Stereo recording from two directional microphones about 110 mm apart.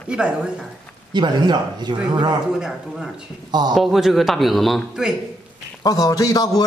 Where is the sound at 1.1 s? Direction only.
40° right (ahead or behind).